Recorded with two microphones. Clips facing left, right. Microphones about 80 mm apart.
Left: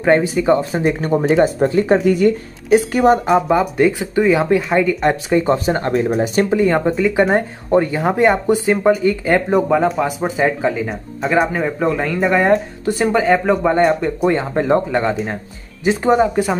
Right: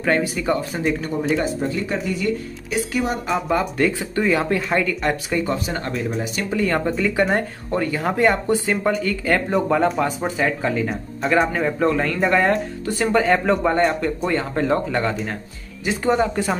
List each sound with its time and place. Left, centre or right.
0.0 s speech: left
0.7 s speech: left
3.4 s speech: centre; by 6.4 s left
6.5 s speech: centre
9.7 s speech: centre
10.3 s speech: centre
10.7 s speech: centre
13.1 s speech: centre; by 16.2 s left
16.2 s speech: centre